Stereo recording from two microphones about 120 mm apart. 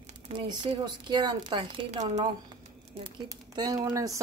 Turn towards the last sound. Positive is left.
turn(degrees=-30)  # may be behind; listen again after turning